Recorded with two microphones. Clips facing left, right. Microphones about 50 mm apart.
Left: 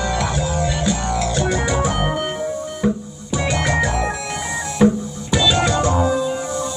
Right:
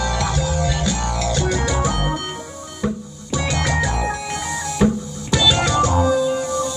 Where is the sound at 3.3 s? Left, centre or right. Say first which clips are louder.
Left 2 dB; left.